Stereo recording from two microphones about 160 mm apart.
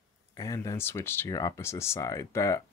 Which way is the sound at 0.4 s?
20° left (ahead or behind).